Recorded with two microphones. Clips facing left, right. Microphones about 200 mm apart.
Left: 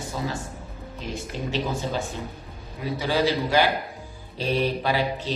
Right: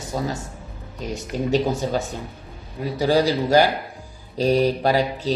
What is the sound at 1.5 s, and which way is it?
A woman's voice, 45° right (ahead or behind).